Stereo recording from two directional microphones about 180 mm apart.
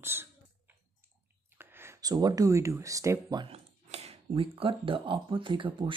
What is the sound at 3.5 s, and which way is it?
Speech, 35° right (ahead or behind).